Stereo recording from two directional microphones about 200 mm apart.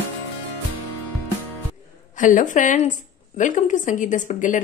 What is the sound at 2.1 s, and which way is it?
Speech, 40° left (ahead or behind).